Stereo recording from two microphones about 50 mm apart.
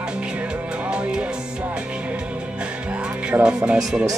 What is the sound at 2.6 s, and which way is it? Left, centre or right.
Music, right.